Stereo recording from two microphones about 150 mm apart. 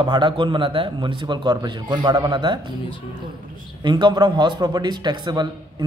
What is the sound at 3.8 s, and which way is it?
A man's voice, 30° right (ahead or behind).